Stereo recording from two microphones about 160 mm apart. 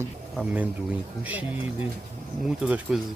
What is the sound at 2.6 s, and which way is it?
Speech, 5° right (ahead or behind).